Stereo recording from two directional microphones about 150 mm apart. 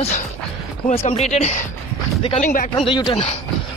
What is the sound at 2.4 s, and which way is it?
Speech, 65° left (ahead or behind).